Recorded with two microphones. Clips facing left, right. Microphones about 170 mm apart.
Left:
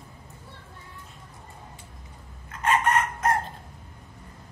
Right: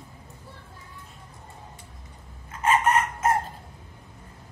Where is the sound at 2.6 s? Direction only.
Centre (ahead or behind).